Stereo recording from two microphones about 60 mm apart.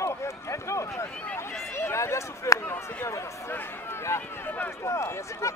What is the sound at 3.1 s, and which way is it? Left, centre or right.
Speech, left.